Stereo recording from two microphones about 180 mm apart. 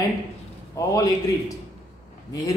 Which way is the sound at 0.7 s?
20° left (ahead or behind).